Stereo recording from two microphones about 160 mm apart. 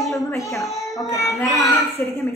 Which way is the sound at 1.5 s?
20° left (ahead or behind).